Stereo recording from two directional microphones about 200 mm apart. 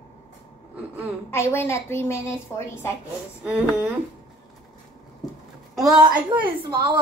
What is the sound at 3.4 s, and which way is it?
Speech, 5° right (ahead or behind).